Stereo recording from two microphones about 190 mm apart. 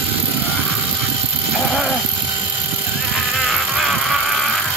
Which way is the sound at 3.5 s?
Centre (ahead or behind).